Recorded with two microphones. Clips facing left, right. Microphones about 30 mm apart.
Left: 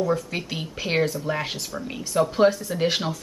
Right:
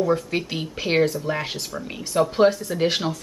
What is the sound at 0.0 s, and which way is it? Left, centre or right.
A woman's voice, centre.